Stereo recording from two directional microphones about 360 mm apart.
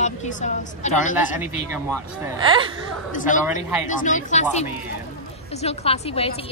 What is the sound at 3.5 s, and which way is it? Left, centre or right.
Speech, left.